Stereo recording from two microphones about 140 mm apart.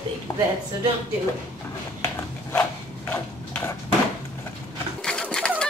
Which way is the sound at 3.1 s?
15° left (ahead or behind).